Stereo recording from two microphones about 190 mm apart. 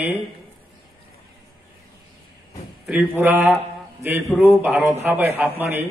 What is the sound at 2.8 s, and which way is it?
Speech, 10° right (ahead or behind).